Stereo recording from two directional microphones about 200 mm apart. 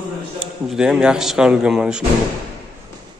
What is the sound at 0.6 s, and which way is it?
A man's voice, centre (ahead or behind).